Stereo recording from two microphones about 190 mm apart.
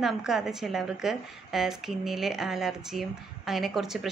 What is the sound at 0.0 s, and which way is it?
A woman's voice, centre (ahead or behind).